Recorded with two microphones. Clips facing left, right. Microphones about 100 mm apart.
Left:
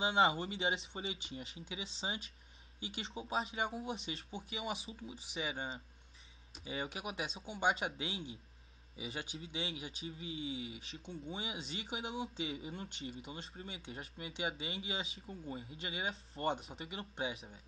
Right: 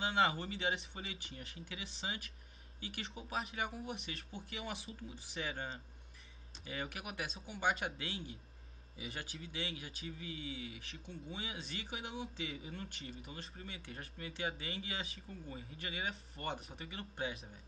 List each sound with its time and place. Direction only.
0.0 s a man's voice: 30° left (ahead or behind)
5.3 s speech: 5° left (ahead or behind)
6.6 s a man's voice: 25° left (ahead or behind)